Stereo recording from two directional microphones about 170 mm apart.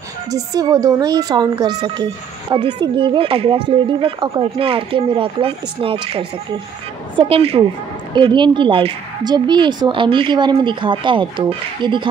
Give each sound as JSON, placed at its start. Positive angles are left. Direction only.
{"t": 0.3, "sound": "a woman's voice", "side_deg": -20}